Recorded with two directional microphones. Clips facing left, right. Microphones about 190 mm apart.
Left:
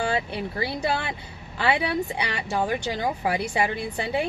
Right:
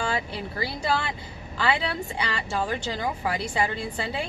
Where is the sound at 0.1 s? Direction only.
20° left (ahead or behind).